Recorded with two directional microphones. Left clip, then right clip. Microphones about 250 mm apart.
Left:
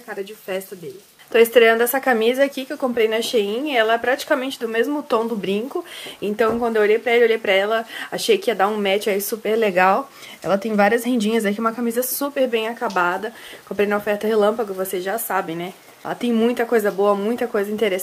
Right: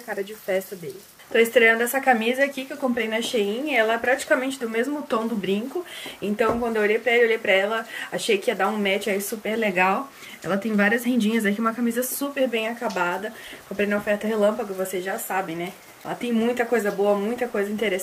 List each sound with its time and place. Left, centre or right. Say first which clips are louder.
0.1 s a woman's voice: right 1 dB; centre